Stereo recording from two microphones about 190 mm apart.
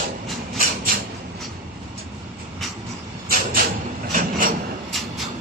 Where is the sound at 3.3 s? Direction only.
50° right (ahead or behind).